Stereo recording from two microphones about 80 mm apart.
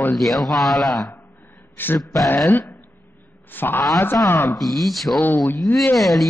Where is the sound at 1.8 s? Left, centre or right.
Left.